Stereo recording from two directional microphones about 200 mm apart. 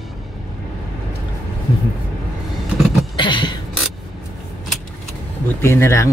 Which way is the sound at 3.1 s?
25° left (ahead or behind).